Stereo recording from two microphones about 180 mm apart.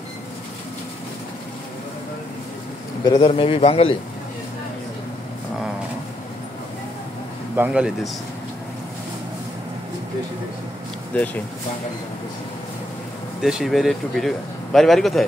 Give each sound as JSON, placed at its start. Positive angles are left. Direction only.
{"t": 3.0, "sound": "a man's voice", "side_deg": 20}
{"t": 7.5, "sound": "speech", "side_deg": -5}
{"t": 11.1, "sound": "speech", "side_deg": 5}
{"t": 13.4, "sound": "speech", "side_deg": -5}